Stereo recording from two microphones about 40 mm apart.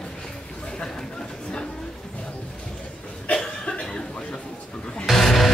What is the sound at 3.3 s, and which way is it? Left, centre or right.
Cough, centre.